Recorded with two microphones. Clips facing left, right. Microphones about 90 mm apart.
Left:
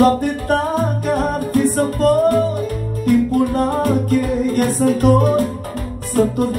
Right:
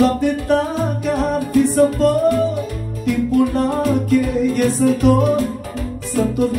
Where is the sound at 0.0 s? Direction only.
45° left (ahead or behind).